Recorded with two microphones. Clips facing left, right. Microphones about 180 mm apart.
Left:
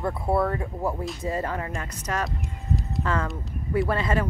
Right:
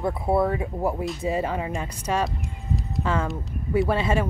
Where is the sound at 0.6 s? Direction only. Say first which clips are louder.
Right 3 dB; 15° right (ahead or behind).